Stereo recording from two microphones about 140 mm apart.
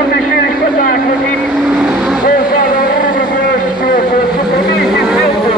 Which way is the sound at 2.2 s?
90° left.